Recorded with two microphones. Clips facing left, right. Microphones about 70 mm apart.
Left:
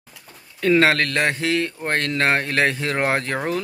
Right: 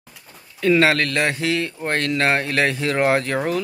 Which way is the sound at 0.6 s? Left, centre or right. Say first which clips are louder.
Even; left.